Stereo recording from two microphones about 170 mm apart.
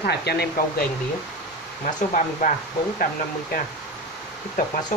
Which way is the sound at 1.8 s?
50° left (ahead or behind).